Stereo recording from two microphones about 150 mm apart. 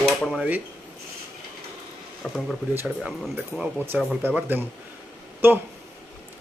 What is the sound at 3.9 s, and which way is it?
A man's voice, 10° right (ahead or behind).